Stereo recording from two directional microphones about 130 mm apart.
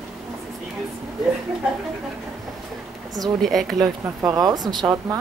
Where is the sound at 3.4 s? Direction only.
Centre (ahead or behind).